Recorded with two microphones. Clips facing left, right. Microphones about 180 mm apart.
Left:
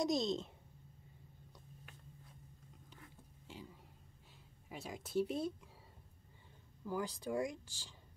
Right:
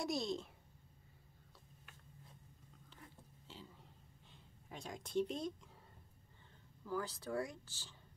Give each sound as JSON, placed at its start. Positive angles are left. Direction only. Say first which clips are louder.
{"t": 0.0, "sound": "a woman's voice", "louder": "left 4 dB", "side_deg": 20}
{"t": 3.5, "sound": "a sound", "louder": "left 4 dB", "side_deg": 10}
{"t": 4.6, "sound": "speech", "louder": "left 2 dB", "side_deg": 5}
{"t": 6.8, "sound": "speech", "louder": "left 2 dB", "side_deg": 15}